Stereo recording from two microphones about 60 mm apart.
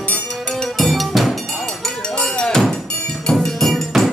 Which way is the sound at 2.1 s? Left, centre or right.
Centre.